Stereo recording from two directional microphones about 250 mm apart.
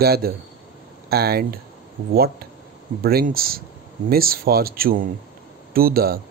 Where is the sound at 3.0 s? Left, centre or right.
Right.